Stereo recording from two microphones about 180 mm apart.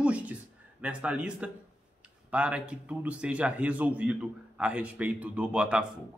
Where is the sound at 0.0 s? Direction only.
10° right (ahead or behind).